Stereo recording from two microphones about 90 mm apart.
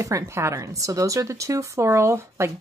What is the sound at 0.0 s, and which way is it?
Speech, 35° right (ahead or behind).